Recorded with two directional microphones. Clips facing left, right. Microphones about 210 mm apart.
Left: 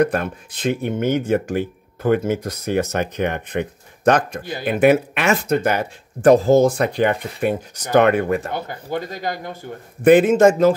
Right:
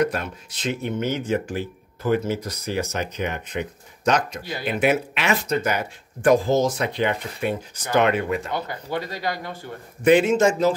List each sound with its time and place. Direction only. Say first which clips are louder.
0.0 s speech: left 5 dB; 55° left (ahead or behind)